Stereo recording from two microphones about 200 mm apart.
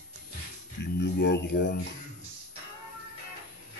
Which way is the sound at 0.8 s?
60° left (ahead or behind).